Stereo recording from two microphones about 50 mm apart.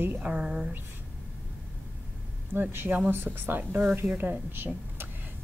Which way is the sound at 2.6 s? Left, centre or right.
Right.